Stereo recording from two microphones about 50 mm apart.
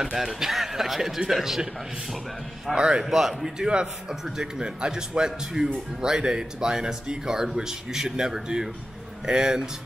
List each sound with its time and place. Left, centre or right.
0.0 s a man's voice: centre
2.7 s a man's voice: centre
3.0 s a man's voice: centre